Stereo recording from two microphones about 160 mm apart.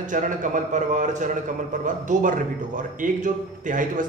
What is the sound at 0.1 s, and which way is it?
Mantra, 50° right (ahead or behind).